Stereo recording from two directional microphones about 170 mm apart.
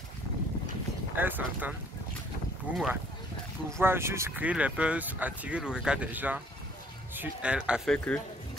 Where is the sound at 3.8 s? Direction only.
15° right (ahead or behind).